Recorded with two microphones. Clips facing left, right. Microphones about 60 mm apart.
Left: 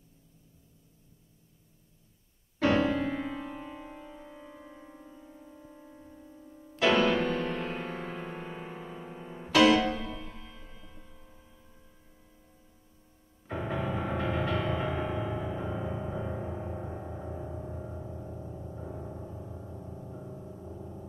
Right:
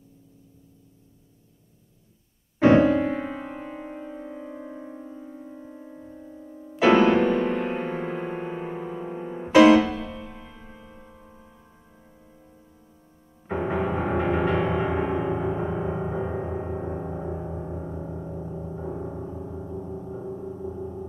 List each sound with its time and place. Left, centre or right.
2.6 s music: right
13.5 s music: right